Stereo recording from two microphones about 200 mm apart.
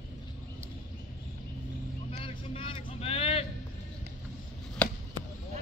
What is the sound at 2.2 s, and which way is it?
Vehicle, 25° left (ahead or behind).